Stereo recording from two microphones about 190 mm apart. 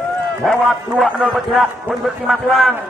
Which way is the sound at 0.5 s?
Centre (ahead or behind).